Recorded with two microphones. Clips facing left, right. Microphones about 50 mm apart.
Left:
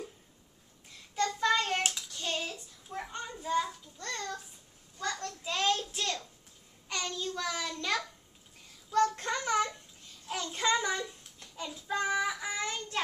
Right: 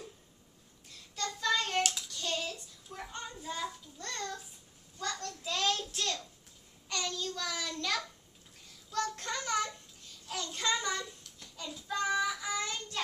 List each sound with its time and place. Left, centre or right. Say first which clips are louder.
1.1 s child singing: left 4 dB; left
2.5 s a sound: left 5 dB; centre
5.4 s child singing: left 3 dB; centre; by 13.1 s left